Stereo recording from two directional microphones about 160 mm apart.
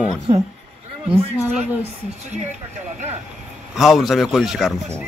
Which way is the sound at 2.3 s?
50° right (ahead or behind).